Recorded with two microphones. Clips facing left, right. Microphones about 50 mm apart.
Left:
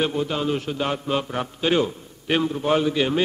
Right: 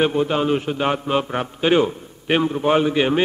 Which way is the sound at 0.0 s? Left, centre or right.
Right.